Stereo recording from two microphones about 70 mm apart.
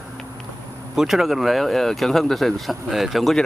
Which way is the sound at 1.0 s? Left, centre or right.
Centre.